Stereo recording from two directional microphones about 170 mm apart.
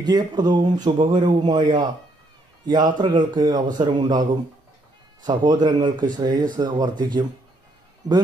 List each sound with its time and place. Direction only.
0.0 s speech: 25° right (ahead or behind)
5.2 s speech: 25° right (ahead or behind)